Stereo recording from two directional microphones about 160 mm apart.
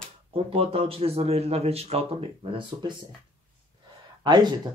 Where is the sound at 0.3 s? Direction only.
35° right (ahead or behind).